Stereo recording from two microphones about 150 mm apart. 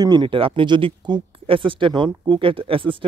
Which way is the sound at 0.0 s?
30° right (ahead or behind).